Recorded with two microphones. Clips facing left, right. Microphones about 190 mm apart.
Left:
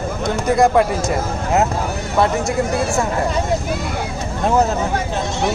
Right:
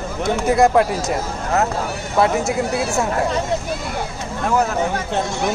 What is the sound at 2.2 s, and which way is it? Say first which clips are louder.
Speech: even; 5° right (ahead or behind).